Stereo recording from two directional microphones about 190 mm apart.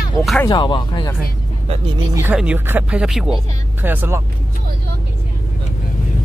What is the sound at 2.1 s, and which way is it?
Speech, 10° right (ahead or behind).